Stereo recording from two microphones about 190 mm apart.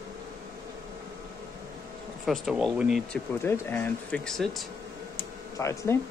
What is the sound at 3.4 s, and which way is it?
Speech, 10° left (ahead or behind).